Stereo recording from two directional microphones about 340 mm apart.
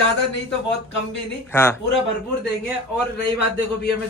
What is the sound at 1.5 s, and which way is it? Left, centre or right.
Speech, centre.